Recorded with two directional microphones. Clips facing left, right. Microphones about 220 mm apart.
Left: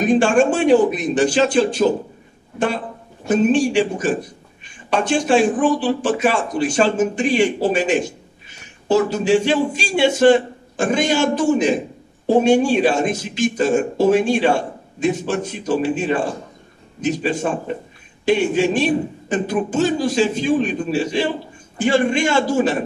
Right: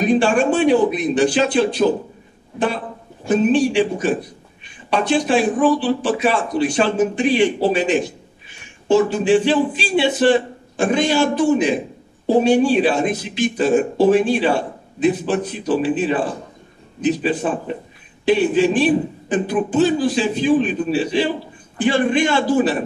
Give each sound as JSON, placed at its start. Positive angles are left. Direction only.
{"t": 0.0, "sound": "speech", "side_deg": 45}
{"t": 3.3, "sound": "a man's voice", "side_deg": 45}